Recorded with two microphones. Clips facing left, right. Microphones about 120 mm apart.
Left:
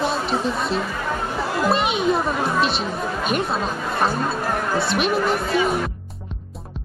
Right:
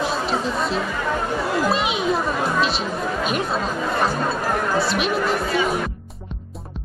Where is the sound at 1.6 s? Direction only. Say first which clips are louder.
Left 4 dB; centre (ahead or behind).